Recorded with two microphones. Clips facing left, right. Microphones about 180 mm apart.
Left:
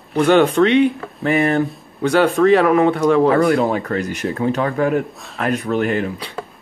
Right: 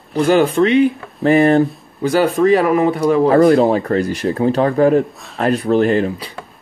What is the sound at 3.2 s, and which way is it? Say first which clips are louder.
Speech: right 4 dB; 35° right (ahead or behind).